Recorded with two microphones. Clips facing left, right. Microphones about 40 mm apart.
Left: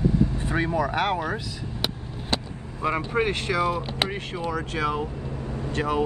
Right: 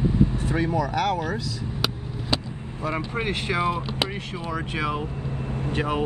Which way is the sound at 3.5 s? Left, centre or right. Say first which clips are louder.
Right 3 dB; right.